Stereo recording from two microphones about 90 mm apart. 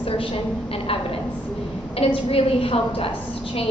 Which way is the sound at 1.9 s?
90° left.